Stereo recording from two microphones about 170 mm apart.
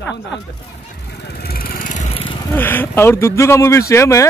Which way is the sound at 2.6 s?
10° left (ahead or behind).